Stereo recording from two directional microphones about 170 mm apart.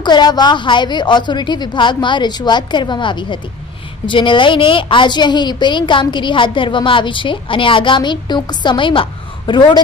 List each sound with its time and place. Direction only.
0.0 s a woman's voice: 25° left (ahead or behind)